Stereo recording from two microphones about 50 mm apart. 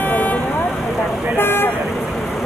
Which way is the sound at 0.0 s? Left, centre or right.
Left.